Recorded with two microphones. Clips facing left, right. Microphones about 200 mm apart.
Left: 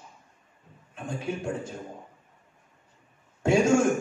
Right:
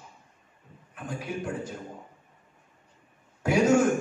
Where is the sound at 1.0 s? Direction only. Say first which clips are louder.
Left 2 dB; 25° left (ahead or behind).